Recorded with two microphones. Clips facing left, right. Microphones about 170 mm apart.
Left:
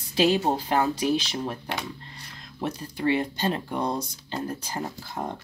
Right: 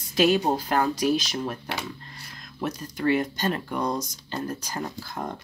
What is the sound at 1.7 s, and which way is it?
Speech, 5° right (ahead or behind).